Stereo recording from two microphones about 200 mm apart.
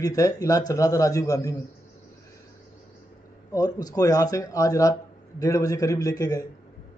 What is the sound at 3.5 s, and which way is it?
Speech, 20° left (ahead or behind).